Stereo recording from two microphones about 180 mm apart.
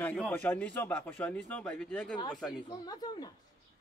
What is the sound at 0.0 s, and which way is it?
Speech, 10° left (ahead or behind).